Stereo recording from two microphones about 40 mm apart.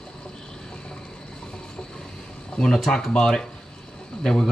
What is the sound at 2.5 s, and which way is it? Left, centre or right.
A man's voice, centre.